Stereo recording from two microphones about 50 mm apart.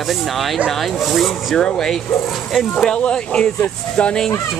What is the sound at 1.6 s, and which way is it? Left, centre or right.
Speech, centre.